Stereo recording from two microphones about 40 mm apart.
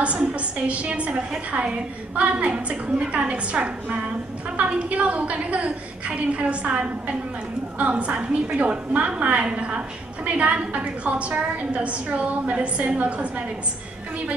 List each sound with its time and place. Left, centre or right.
0.0 s a woman's voice: right